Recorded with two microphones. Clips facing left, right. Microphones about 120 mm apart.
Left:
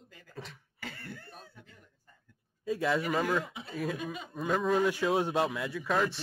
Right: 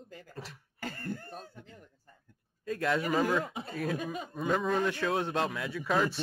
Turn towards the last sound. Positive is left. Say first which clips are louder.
# right 1 dB
turn(degrees=0)  # may be behind; listen again after turning